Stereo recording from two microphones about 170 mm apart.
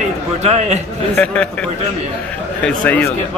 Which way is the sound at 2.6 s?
10° left (ahead or behind).